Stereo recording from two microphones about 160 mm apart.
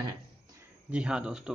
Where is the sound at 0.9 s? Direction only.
5° right (ahead or behind).